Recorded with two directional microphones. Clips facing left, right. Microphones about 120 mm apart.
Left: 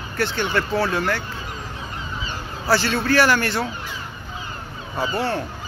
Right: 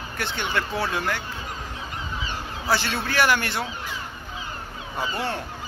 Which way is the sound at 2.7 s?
20° right (ahead or behind).